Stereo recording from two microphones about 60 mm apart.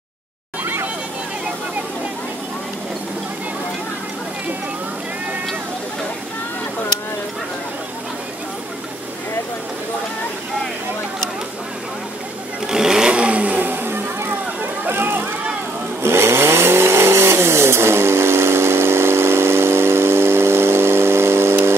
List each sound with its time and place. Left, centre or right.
12.6 s vehicle: centre; by 15.2 s right
16.0 s vehicle: right